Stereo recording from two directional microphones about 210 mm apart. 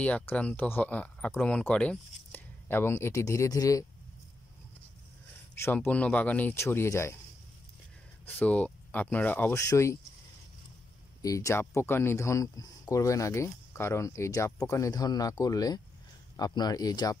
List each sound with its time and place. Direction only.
0.0 s speech: 5° left (ahead or behind)
5.5 s speech: 10° left (ahead or behind)
8.3 s speech: 5° left (ahead or behind)
11.2 s speech: 15° left (ahead or behind)